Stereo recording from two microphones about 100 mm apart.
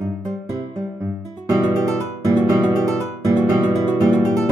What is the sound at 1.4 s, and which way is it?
Music, 35° right (ahead or behind).